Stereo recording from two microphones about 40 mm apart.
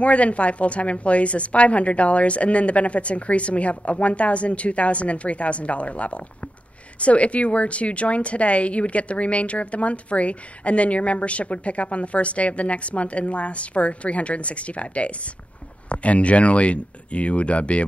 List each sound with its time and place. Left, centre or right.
0.0 s speech: left